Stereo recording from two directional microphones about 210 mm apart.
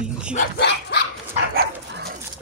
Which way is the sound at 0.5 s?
55° left (ahead or behind).